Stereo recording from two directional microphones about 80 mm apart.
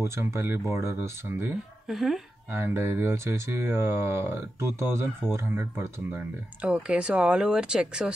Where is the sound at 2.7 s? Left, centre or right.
Right.